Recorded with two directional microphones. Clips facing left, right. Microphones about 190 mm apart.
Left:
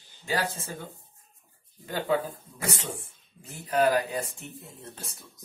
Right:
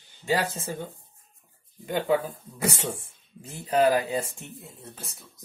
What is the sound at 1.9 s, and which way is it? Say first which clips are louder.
Speech: right 3 dB; 20° right (ahead or behind).